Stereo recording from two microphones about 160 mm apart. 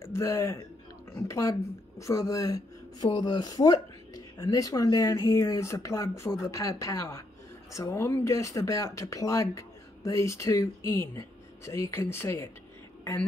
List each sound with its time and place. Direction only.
0.0 s a man's voice: 15° left (ahead or behind)